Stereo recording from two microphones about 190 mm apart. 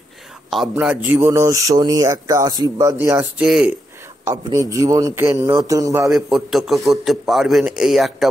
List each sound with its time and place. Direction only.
0.5 s speech: 5° right (ahead or behind)
4.3 s speech: 15° right (ahead or behind)
6.1 s a man's voice: centre (ahead or behind)